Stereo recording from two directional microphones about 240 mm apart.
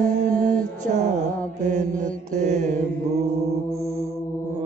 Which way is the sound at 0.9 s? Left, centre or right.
Right.